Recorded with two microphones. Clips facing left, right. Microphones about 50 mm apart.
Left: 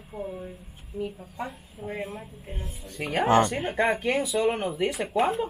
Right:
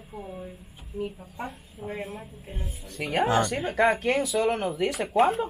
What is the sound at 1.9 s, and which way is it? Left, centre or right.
Speech, centre.